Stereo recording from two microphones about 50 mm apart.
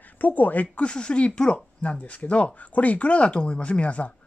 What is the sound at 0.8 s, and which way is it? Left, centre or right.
Speech, left.